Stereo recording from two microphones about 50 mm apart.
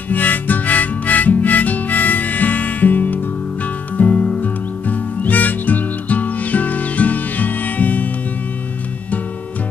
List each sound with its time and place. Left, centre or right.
0.1 s harmonica: left
4.1 s music: centre
4.4 s music: left